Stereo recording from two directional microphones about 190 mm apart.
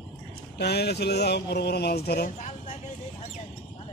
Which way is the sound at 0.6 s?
60° left (ahead or behind).